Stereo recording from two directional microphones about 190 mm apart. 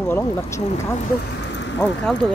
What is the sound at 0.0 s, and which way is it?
Speech, 15° left (ahead or behind).